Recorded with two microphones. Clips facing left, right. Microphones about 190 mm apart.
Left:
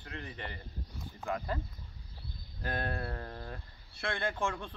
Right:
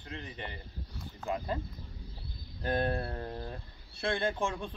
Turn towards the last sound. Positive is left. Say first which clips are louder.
# right 2 dB
turn(degrees=-15)  # may be behind; listen again after turning